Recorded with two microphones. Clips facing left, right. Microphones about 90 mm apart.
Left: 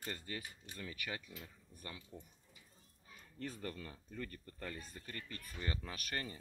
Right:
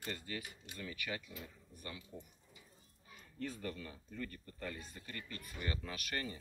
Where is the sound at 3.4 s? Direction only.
35° left (ahead or behind).